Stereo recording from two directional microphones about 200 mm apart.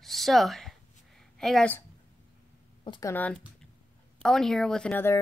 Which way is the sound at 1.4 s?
Centre (ahead or behind).